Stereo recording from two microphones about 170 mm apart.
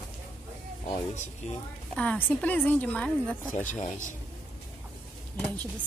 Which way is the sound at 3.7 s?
40° left (ahead or behind).